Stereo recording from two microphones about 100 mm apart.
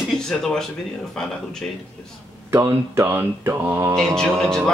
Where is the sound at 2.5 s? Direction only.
25° right (ahead or behind).